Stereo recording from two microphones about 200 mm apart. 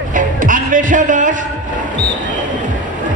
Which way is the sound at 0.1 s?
40° right (ahead or behind).